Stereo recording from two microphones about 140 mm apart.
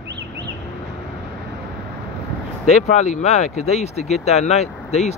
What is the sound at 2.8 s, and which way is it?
Speech, 55° left (ahead or behind).